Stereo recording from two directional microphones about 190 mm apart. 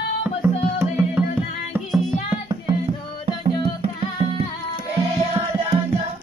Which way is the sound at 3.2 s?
30° right (ahead or behind).